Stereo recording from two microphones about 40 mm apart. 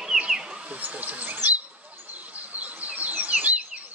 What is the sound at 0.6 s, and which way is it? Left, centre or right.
Speech, right.